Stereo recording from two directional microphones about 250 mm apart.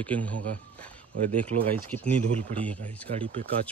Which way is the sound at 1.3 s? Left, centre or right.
Right.